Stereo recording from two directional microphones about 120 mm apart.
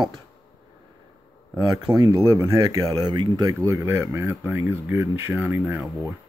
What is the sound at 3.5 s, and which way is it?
Speech, 20° right (ahead or behind).